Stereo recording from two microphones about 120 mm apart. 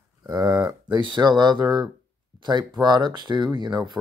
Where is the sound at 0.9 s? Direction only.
40° right (ahead or behind).